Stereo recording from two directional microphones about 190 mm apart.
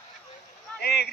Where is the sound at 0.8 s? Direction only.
60° left (ahead or behind).